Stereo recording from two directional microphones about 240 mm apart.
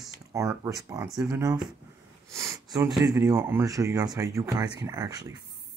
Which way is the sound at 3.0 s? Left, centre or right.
Centre.